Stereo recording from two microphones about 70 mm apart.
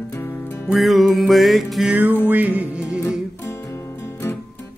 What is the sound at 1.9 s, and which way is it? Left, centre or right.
Music, right.